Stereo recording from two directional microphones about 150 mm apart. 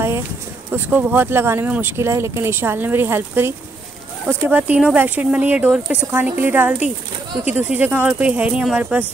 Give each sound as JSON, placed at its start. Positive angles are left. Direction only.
{"t": 0.7, "sound": "speech", "side_deg": -10}